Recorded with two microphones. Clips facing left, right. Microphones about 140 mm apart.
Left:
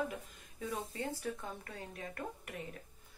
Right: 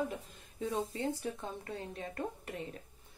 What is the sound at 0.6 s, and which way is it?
Speech, 25° right (ahead or behind).